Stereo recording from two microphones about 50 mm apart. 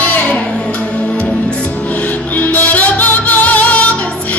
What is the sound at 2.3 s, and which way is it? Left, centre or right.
Music, left.